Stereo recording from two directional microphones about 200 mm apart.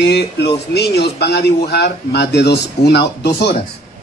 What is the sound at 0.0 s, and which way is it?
Speech, 60° left (ahead or behind).